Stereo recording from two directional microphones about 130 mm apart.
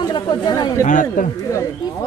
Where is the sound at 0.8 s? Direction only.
80° left.